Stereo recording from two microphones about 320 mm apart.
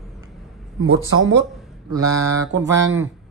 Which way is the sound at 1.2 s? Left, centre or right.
Right.